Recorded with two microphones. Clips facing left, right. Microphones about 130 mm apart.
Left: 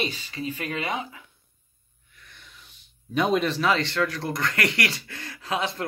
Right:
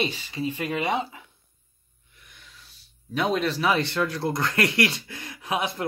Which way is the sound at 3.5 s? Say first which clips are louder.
Even; 15° right (ahead or behind).